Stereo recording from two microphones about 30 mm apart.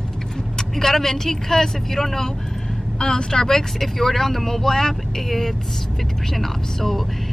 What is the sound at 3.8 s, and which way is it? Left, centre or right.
Speech, centre.